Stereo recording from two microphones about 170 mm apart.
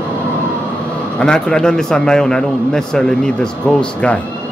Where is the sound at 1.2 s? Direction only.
5° left (ahead or behind).